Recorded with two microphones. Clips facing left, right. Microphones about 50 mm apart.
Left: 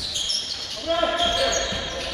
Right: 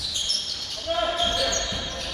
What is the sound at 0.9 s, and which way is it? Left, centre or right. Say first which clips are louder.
Basketball bounce: left 3 dB; left.